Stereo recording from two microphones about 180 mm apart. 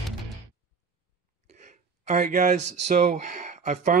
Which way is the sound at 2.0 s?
40° right (ahead or behind).